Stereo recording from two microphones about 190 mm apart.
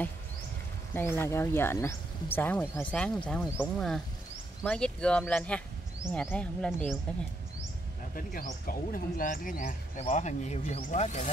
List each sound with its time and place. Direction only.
0.9 s speech: 10° left (ahead or behind)
8.3 s speech: 50° left (ahead or behind)